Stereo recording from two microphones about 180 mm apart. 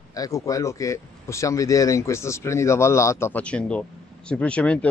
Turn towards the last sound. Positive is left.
turn(degrees=5)  # may be behind; listen again after turning